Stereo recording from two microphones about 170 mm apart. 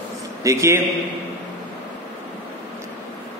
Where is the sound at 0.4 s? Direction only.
20° right (ahead or behind).